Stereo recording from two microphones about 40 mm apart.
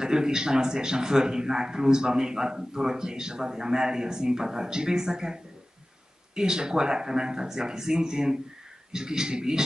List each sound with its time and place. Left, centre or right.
0.0 s a man's voice: centre